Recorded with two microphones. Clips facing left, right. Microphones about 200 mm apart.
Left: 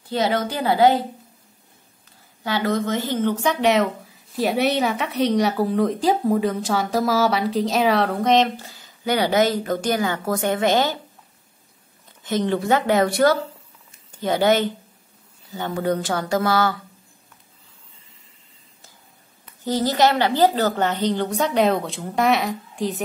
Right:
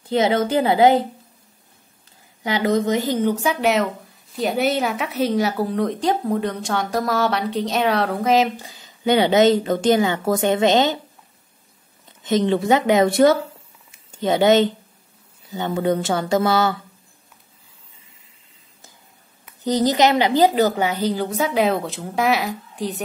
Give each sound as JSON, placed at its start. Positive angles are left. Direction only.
{"t": 0.0, "sound": "speech", "side_deg": -20}
{"t": 2.4, "sound": "speech", "side_deg": -20}
{"t": 12.2, "sound": "speech", "side_deg": -20}
{"t": 19.6, "sound": "a woman's voice", "side_deg": -20}